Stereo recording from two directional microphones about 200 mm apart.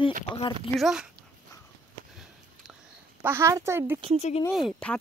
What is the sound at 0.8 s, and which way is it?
Speech, centre (ahead or behind).